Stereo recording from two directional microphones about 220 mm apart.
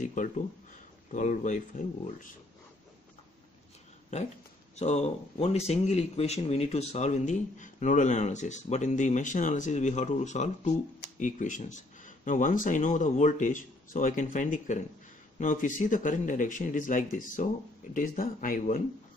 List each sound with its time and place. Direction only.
0.0 s speech: 35° left (ahead or behind)
4.7 s speech: 30° left (ahead or behind)